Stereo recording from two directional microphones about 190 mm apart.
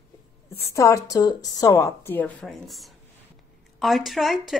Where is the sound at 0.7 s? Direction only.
15° left (ahead or behind); by 4.4 s centre (ahead or behind).